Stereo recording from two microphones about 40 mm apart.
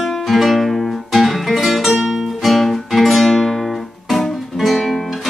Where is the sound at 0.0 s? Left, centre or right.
Centre.